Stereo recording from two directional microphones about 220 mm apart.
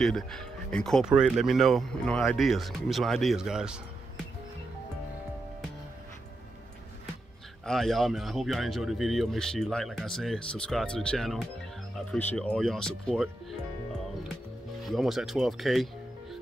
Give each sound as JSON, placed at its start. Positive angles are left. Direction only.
{"t": 0.0, "sound": "speech", "side_deg": 0}
{"t": 7.6, "sound": "speech", "side_deg": 0}
{"t": 14.9, "sound": "speech", "side_deg": 0}